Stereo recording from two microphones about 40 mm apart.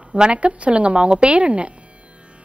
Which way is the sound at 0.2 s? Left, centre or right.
Right.